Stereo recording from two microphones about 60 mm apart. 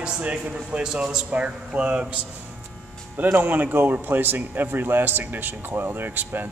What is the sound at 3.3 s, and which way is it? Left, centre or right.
A man's voice, right.